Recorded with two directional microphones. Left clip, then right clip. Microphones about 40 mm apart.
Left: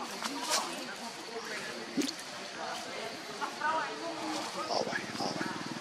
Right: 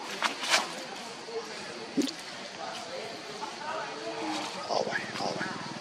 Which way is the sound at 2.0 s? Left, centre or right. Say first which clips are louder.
Right 4 dB; centre.